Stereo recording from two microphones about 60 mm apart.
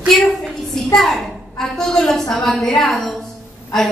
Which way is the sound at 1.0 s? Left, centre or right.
Centre.